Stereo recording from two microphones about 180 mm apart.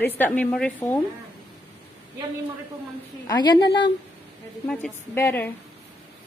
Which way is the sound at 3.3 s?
25° left (ahead or behind).